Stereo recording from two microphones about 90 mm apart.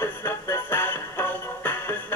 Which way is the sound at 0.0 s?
25° left (ahead or behind).